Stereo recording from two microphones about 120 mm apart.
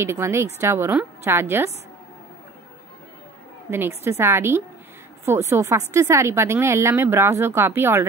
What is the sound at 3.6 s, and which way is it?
Speech, 20° right (ahead or behind).